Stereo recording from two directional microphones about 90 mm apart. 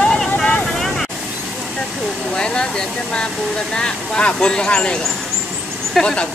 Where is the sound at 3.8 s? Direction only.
10° left (ahead or behind).